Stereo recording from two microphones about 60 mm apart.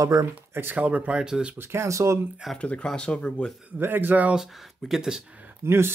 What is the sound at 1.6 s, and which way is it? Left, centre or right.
Speech, right.